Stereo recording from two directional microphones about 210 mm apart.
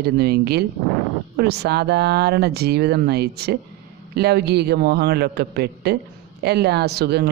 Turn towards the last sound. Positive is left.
turn(degrees=-50)  # may be behind; listen again after turning